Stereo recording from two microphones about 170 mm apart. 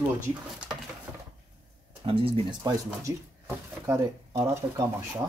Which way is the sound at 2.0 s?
35° right (ahead or behind).